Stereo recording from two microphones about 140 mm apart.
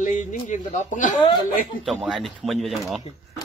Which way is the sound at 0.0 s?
60° left (ahead or behind).